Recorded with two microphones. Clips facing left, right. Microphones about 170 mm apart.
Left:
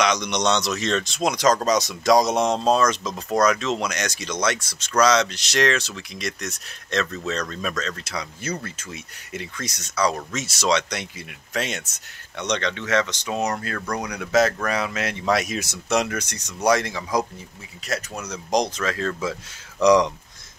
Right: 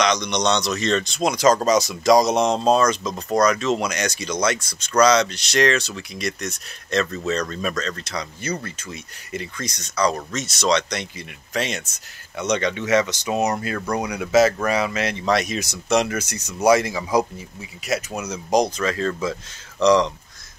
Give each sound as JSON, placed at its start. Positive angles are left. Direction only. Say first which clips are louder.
{"t": 0.0, "sound": "speech", "louder": "right 1 dB", "side_deg": 5}
{"t": 19.8, "sound": "speech", "louder": "even", "side_deg": 15}